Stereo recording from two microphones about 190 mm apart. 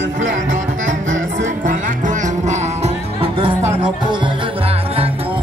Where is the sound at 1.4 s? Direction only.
40° right (ahead or behind).